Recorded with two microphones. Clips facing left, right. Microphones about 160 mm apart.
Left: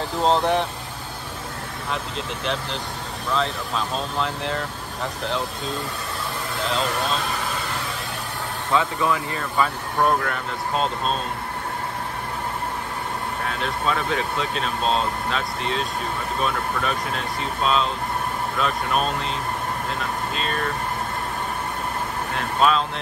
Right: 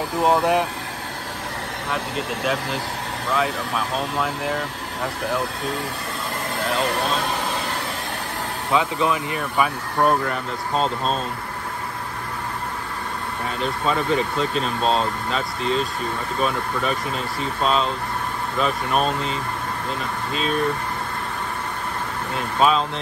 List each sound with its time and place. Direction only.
0.2 s speech: 10° right (ahead or behind)
1.9 s speech: 5° right (ahead or behind)
8.7 s speech: 20° right (ahead or behind)
10.0 s speech: centre (ahead or behind)
13.5 s speech: centre (ahead or behind)
22.6 s speech: centre (ahead or behind)